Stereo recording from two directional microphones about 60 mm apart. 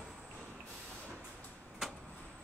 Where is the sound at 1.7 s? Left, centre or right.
Centre.